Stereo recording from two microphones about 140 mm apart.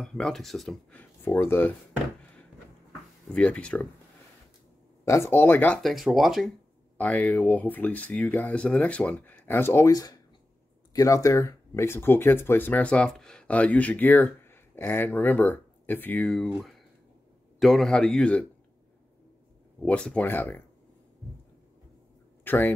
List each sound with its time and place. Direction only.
0.0 s a man's voice: 5° left (ahead or behind)
0.9 s speech: 15° left (ahead or behind)
3.3 s speech: 10° left (ahead or behind)
5.0 s speech: 20° left (ahead or behind)
5.8 s a man's voice: centre (ahead or behind)
7.0 s a man's voice: 10° left (ahead or behind)
19.8 s speech: 10° left (ahead or behind)
22.4 s speech: 15° left (ahead or behind)